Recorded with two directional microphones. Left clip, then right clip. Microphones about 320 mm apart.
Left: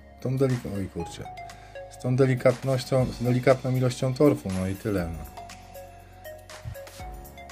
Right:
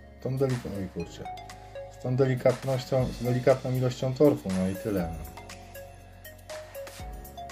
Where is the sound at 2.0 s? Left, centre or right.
Left.